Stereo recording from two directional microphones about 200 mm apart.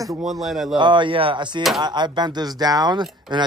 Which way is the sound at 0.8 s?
25° right (ahead or behind).